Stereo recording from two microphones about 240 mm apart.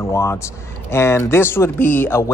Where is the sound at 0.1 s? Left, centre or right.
Centre.